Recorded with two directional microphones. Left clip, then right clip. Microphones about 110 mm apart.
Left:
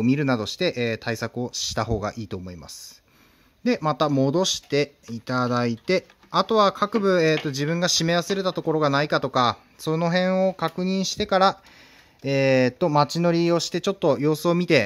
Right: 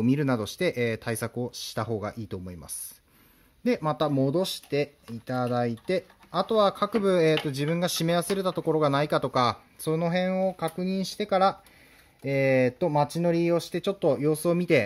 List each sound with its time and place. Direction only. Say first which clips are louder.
0.0 s speech: left 3 dB; 20° left (ahead or behind)
3.6 s speech: left 4 dB; 25° left (ahead or behind); by 6.4 s 55° left (ahead or behind)
6.4 s speech: left 3 dB; 35° left (ahead or behind); by 9.8 s 15° left (ahead or behind)
9.8 s speech: left 4 dB; 35° left (ahead or behind)